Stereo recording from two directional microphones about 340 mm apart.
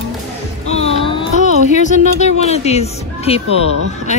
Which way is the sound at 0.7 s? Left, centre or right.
Centre.